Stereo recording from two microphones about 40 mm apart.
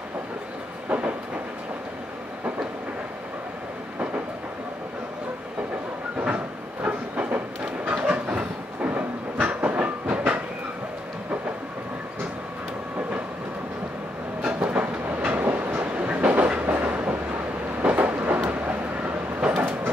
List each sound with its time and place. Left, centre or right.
0.8 s train: right
6.2 s train: right
7.8 s a sound: right
8.8 s train: right
14.5 s train: right
15.4 s train: right
15.9 s train: right
16.6 s train: right
17.8 s thunder: right
18.7 s train: right